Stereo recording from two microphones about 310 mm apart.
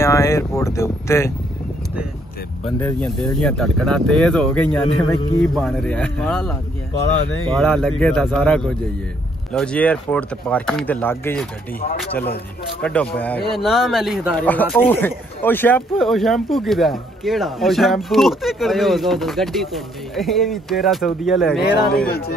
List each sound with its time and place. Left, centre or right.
0.0 s speech: centre
2.6 s speech: centre
7.5 s speech: centre
21.9 s speech: left